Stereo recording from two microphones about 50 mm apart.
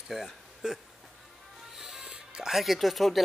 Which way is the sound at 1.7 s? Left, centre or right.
Centre.